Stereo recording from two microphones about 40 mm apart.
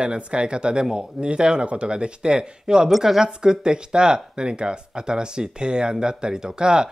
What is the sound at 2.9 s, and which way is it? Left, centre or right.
Speech, centre.